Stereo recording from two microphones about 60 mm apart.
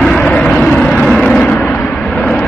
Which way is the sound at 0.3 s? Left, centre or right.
Centre.